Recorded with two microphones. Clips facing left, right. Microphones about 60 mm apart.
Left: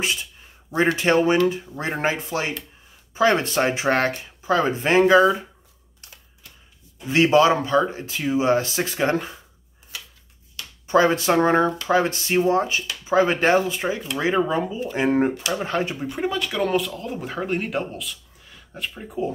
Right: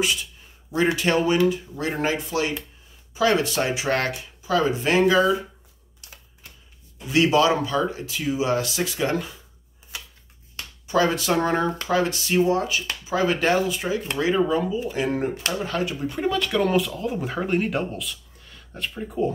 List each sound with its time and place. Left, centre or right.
0.0 s a sound: left
0.9 s speech: left
7.1 s speech: left
10.9 s speech: left
16.0 s speech: centre